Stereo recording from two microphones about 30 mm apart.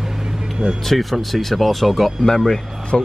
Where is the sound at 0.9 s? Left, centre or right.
Centre.